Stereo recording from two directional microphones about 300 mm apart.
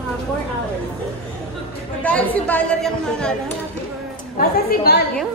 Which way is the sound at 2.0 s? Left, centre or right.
Centre.